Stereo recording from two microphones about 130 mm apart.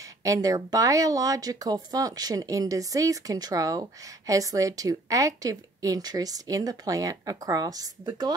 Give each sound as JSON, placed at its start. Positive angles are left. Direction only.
{"t": 0.2, "sound": "speech", "side_deg": -25}